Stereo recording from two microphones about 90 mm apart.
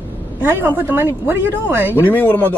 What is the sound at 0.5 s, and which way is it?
Speech, 20° right (ahead or behind).